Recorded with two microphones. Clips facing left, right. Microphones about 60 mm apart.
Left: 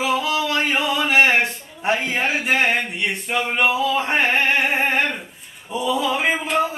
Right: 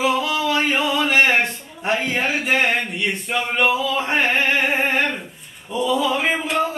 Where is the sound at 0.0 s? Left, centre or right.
Centre.